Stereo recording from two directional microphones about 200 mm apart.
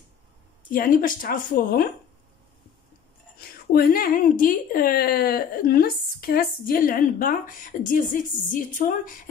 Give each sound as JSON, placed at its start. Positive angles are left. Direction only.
{"t": 0.7, "sound": "a woman's voice", "side_deg": 45}
{"t": 3.3, "sound": "a woman's voice", "side_deg": 45}